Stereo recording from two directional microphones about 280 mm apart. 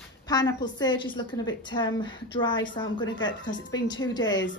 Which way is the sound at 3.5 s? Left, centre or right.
Left.